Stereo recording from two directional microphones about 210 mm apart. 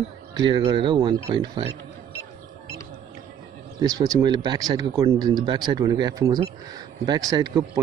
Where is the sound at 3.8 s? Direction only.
15° right (ahead or behind).